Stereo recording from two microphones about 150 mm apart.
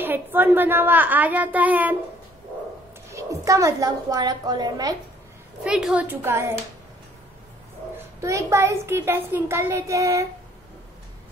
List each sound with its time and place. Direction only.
0.0 s a child's voice: 15° right (ahead or behind)
3.1 s a woman's voice: 20° right (ahead or behind)
5.6 s a child's voice: 5° right (ahead or behind)
8.0 s a child's voice: 20° right (ahead or behind)